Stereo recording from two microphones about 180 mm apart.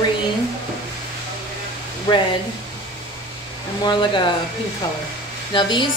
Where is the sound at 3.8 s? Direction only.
25° left (ahead or behind).